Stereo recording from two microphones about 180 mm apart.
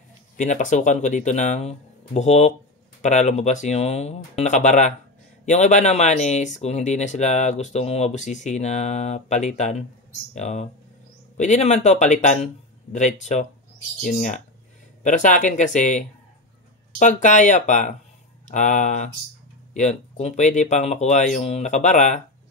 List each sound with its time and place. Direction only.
0.4 s speech: 45° left (ahead or behind)